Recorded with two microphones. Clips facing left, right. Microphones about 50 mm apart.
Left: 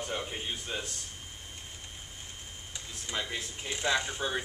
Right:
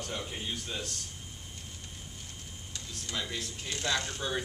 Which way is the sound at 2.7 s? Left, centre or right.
Centre.